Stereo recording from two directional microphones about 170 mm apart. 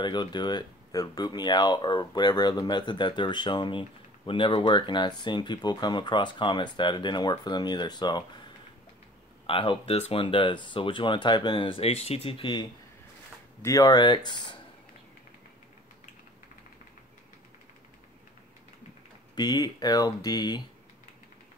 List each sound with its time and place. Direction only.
0.0 s speech: 25° left (ahead or behind)
9.5 s speech: 30° left (ahead or behind)
13.6 s speech: 20° left (ahead or behind)
19.3 s speech: 25° left (ahead or behind)